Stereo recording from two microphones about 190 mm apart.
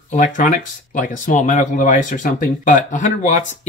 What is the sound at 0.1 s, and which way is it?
Speech, 45° left (ahead or behind).